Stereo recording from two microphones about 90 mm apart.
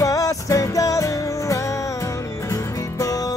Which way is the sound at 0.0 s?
40° left (ahead or behind).